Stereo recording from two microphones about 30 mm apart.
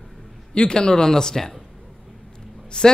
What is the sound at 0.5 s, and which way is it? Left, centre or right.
A man's voice, left.